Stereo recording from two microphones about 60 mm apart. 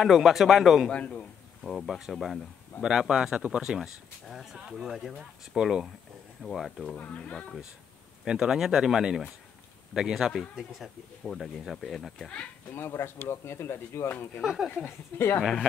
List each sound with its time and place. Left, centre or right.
0.0 s speech: centre
0.9 s speech: left
1.6 s speech: centre
7.0 s speech: left
8.3 s speech: centre
12.7 s speech: left
14.4 s speech: centre
15.1 s speech: left